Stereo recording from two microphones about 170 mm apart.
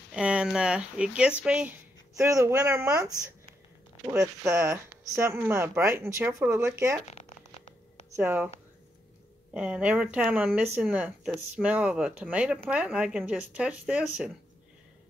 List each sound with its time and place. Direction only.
0.1 s speech: 5° right (ahead or behind)
2.1 s speech: 15° right (ahead or behind)
7.1 s a sound: 40° left (ahead or behind)
8.2 s speech: 10° right (ahead or behind)
9.5 s speech: 5° right (ahead or behind)